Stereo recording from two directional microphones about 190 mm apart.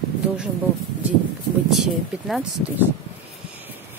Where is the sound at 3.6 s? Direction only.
10° right (ahead or behind).